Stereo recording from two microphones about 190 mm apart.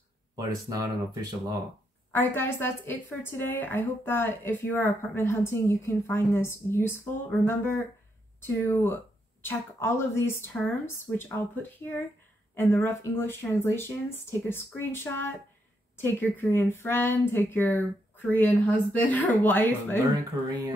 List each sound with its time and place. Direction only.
0.4 s speech: 20° right (ahead or behind)
2.1 s speech: 10° left (ahead or behind)